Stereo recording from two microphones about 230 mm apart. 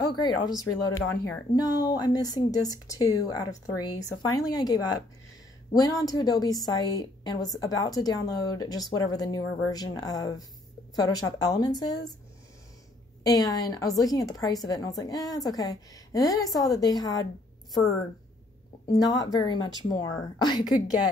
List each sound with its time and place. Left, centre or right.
0.8 s a woman's voice: centre
13.2 s a woman's voice: centre
18.9 s a woman's voice: centre